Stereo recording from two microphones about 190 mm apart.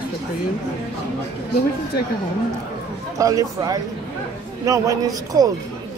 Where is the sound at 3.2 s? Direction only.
20° right (ahead or behind).